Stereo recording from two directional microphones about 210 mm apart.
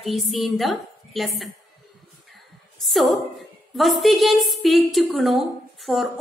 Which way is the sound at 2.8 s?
Centre (ahead or behind).